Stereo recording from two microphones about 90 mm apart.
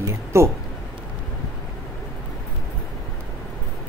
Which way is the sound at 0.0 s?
30° right (ahead or behind).